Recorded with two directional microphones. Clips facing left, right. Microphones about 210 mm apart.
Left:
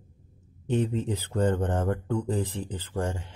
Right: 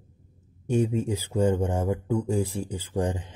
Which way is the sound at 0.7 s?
10° right (ahead or behind).